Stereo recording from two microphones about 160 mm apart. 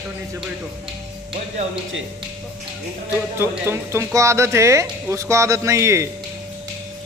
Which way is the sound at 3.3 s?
15° right (ahead or behind).